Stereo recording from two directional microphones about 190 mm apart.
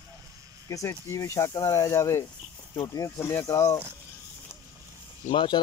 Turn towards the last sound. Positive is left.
turn(degrees=25)  # may be behind; listen again after turning